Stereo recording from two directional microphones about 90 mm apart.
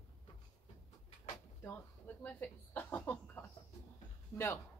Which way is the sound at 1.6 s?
25° left (ahead or behind).